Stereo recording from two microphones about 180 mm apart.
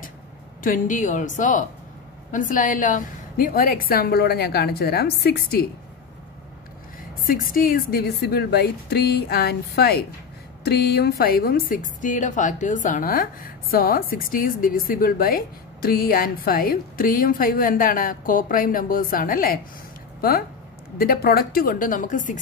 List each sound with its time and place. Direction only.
0.7 s a woman's voice: 45° left (ahead or behind)
7.2 s a woman's voice: 50° left (ahead or behind)